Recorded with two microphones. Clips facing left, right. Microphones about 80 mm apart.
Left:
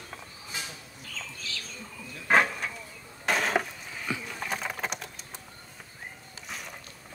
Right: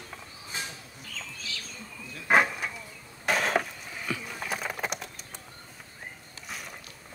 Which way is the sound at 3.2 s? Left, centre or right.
Centre.